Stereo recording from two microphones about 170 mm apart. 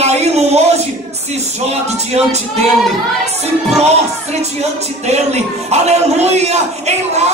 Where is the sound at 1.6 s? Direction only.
40° right (ahead or behind).